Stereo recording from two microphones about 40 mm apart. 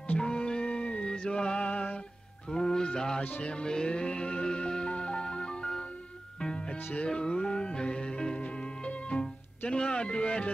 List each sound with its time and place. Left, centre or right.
0.2 s music: left
1.6 s music: left
2.5 s a sound: centre
3.4 s music: left
9.7 s speech: left